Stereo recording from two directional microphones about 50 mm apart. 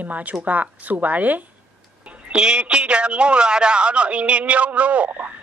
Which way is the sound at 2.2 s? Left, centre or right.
Centre.